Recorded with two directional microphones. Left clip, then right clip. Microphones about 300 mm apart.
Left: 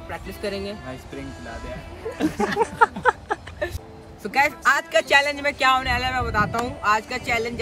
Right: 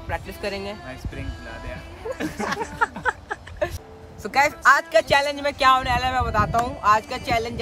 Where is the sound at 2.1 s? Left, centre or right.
Centre.